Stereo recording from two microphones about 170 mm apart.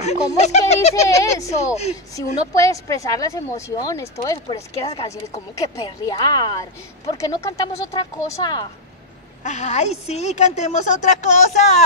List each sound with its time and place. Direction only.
0.0 s speech: 40° left (ahead or behind)
1.0 s speech: 20° left (ahead or behind)
9.4 s a woman's voice: 45° left (ahead or behind)